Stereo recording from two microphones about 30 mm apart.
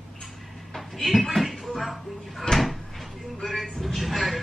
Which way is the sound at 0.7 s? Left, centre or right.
Centre.